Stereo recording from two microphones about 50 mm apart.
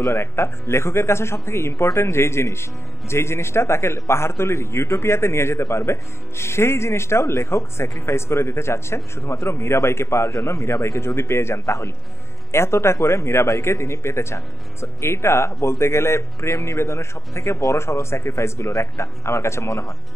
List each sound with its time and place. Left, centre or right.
0.1 s speech: left